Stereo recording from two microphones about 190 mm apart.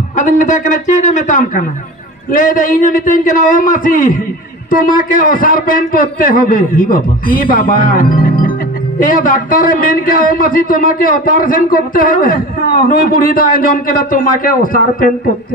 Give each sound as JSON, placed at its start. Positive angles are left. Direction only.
{"t": 0.1, "sound": "a man's voice", "side_deg": 40}